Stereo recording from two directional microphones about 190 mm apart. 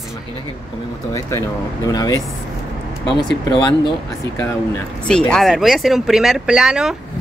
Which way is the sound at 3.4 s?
25° left (ahead or behind).